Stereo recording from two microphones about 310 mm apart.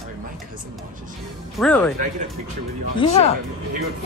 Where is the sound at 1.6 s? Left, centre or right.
Centre.